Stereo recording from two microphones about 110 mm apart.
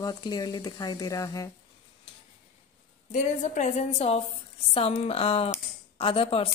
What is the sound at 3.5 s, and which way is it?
A woman's voice, 90° left.